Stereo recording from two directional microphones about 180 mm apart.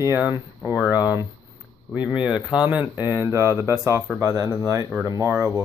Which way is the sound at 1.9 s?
5° right (ahead or behind).